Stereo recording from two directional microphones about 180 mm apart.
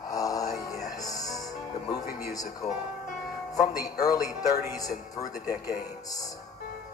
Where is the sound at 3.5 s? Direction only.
20° left (ahead or behind).